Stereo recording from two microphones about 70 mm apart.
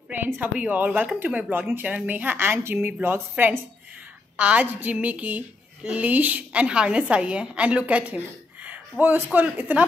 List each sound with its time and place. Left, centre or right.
0.1 s a woman's voice: right
4.4 s a woman's voice: right